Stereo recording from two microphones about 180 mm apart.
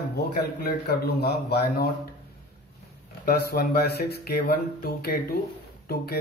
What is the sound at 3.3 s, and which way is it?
Speech, 60° left (ahead or behind).